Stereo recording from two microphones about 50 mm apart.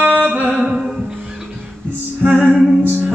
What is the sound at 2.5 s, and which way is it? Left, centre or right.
Music, centre.